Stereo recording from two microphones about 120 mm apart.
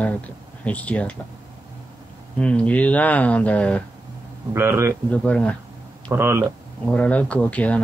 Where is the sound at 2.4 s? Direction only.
10° left (ahead or behind).